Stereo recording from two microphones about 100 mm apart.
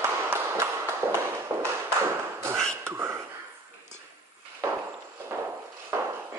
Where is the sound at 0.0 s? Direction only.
25° right (ahead or behind).